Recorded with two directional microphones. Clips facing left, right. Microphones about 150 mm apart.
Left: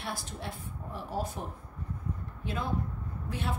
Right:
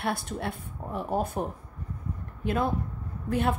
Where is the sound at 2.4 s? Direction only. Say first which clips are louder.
Right 6 dB; 55° right (ahead or behind).